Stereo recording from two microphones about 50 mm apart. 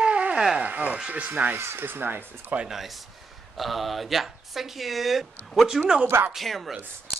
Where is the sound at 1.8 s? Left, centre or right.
Right.